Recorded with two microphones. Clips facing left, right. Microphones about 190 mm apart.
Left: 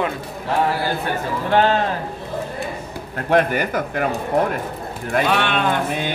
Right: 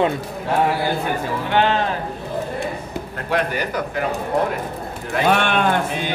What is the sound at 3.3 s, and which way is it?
Speech, 50° left (ahead or behind).